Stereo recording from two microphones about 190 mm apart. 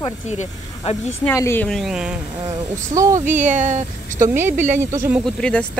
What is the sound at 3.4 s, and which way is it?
Speech, 40° right (ahead or behind).